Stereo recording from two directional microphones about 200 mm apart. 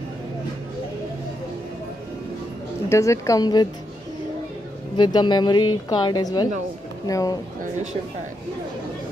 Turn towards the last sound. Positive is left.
turn(degrees=20)  # may be behind; listen again after turning